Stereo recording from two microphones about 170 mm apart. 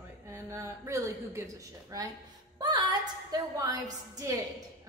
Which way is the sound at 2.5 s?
25° right (ahead or behind).